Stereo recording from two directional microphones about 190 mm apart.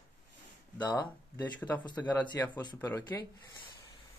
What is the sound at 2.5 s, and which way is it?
Speech, 25° left (ahead or behind).